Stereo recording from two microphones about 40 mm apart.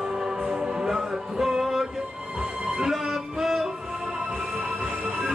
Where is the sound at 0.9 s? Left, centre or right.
Centre.